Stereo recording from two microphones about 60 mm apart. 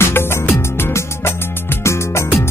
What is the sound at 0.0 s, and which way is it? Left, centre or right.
Music, left.